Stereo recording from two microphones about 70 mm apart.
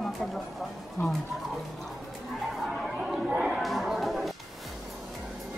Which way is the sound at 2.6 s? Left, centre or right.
Centre.